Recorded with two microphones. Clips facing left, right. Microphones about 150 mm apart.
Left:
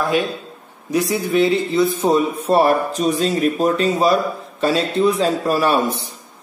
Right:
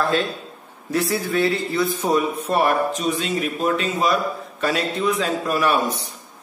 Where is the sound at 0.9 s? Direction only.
15° left (ahead or behind).